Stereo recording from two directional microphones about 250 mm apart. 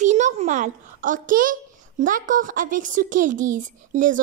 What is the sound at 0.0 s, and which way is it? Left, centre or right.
A child's voice, right.